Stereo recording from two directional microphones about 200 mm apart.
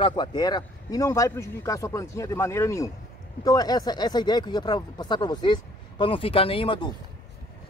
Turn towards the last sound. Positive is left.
turn(degrees=25)  # may be behind; listen again after turning